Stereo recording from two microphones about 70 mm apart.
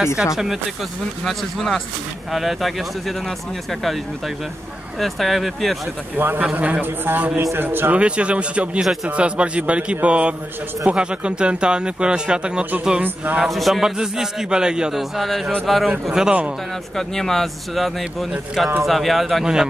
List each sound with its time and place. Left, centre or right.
0.0 s a man's voice: centre
4.9 s speech: centre
6.1 s a man's voice: right
7.9 s a man's voice: centre
13.0 s a man's voice: right
13.4 s a man's voice: centre
15.9 s a man's voice: centre
16.9 s speech: centre